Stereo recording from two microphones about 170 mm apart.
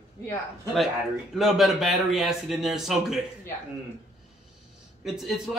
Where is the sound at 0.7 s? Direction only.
Centre (ahead or behind).